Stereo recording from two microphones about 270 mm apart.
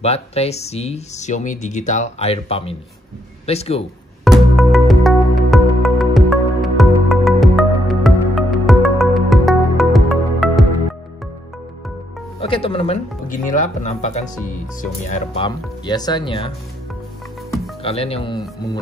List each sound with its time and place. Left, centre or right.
0.0 s speech: left
4.2 s music: centre
12.4 s speech: centre
17.8 s speech: left